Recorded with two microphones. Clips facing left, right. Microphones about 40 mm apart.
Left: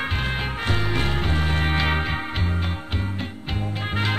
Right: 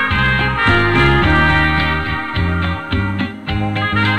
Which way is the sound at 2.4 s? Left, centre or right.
Right.